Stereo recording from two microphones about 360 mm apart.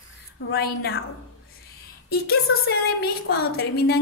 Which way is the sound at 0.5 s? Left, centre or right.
Left.